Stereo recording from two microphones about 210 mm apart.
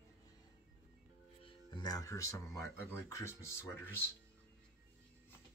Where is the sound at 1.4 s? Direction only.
20° left (ahead or behind).